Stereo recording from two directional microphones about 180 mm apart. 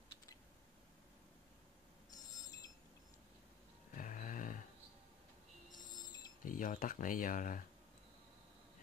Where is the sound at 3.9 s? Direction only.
45° left (ahead or behind).